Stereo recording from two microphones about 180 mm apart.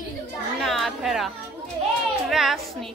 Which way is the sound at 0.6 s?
Centre (ahead or behind).